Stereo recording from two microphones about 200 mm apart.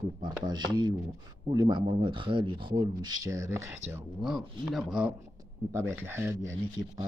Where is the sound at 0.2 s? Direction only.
20° right (ahead or behind).